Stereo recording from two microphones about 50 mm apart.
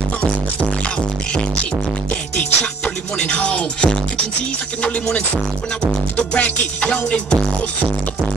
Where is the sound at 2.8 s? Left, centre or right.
Left.